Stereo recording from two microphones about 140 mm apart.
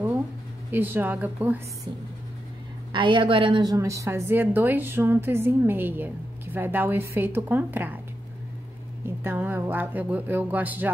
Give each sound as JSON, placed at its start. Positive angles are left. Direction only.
{"t": 0.7, "sound": "a woman's voice", "side_deg": -15}
{"t": 2.9, "sound": "a woman's voice", "side_deg": -35}
{"t": 3.7, "sound": "a woman's voice", "side_deg": -20}
{"t": 9.0, "sound": "a woman's voice", "side_deg": -15}